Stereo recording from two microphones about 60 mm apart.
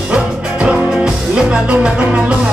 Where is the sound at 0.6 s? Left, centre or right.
Centre.